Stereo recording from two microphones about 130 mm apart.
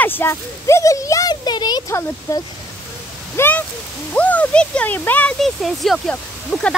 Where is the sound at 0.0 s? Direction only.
15° left (ahead or behind).